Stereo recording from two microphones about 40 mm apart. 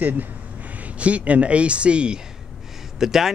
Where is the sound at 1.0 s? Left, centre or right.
Right.